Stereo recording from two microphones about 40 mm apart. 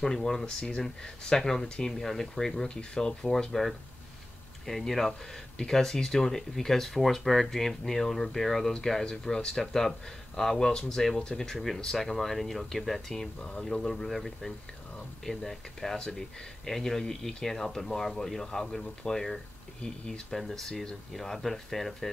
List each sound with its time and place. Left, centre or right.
0.0 s speech: centre
4.6 s speech: centre